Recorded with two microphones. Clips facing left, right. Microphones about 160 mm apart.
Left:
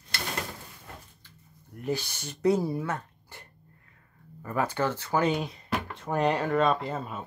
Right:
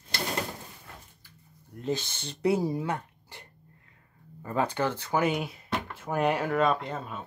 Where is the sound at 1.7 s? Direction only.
20° right (ahead or behind).